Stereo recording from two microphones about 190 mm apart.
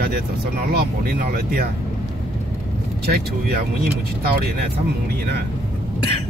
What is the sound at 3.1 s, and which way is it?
Speech, 55° right (ahead or behind).